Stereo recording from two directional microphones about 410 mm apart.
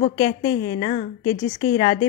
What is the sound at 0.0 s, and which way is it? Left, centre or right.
A woman's voice, centre.